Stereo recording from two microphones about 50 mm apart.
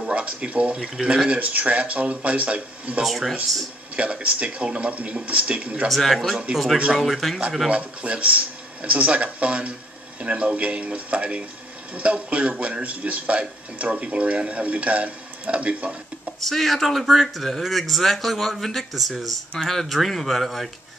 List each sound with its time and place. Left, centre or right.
0.1 s a man's voice: right
3.0 s speech: centre
3.9 s a man's voice: right
5.9 s speech: centre
7.7 s a man's voice: right
16.3 s speech: centre